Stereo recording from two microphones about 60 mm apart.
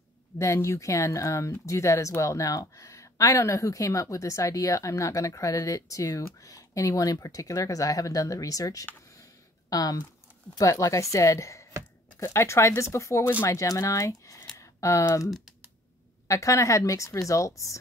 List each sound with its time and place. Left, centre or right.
0.4 s speech: left
9.7 s speech: left
10.6 s speech: left
13.2 s speech: left
13.5 s speech: left